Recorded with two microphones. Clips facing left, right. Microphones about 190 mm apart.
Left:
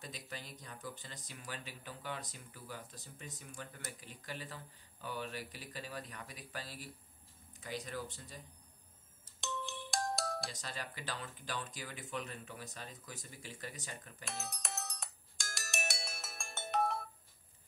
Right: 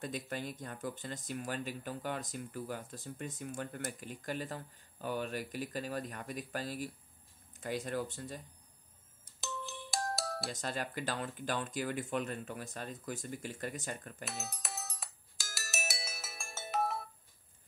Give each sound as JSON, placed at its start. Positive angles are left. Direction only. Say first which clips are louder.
{"t": 0.0, "sound": "speech", "louder": "right 9 dB", "side_deg": -55}
{"t": 9.4, "sound": "ringtone", "louder": "even", "side_deg": -5}
{"t": 10.5, "sound": "speech", "louder": "right 8 dB", "side_deg": -50}
{"t": 14.2, "sound": "ringtone", "louder": "left 2 dB", "side_deg": 0}